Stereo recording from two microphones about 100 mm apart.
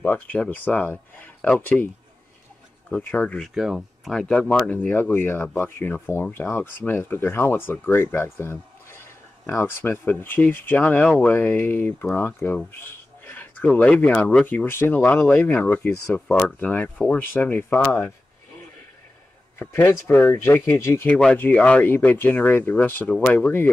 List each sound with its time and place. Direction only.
0.0 s speech: 15° left (ahead or behind)
2.9 s speech: 15° left (ahead or behind)
3.5 s speech: 5° right (ahead or behind)
4.1 s speech: 10° left (ahead or behind)
12.7 s a sound: 20° left (ahead or behind)
13.7 s speech: 15° left (ahead or behind)
19.6 s speech: 25° left (ahead or behind)
21.4 s speech: 15° left (ahead or behind)